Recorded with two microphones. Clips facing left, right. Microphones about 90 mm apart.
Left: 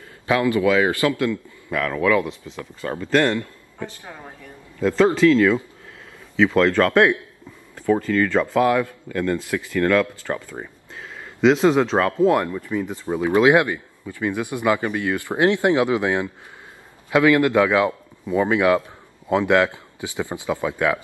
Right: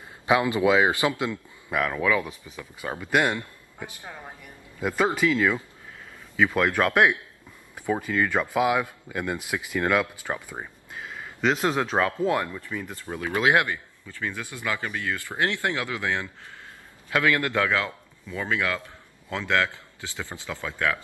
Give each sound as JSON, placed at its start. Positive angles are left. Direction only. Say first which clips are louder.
{"t": 0.3, "sound": "a man's voice", "louder": "left 2 dB", "side_deg": -20}
{"t": 12.5, "sound": "a man's voice", "louder": "left 9 dB", "side_deg": 5}